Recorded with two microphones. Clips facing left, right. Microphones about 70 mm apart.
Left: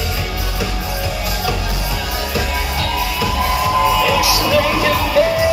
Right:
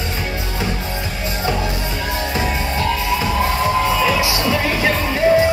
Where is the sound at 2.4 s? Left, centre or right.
Right.